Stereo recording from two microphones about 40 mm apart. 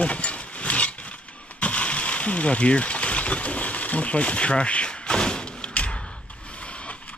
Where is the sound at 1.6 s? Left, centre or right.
Left.